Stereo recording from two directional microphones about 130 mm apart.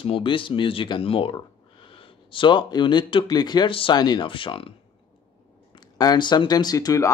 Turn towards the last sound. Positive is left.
turn(degrees=25)  # may be behind; listen again after turning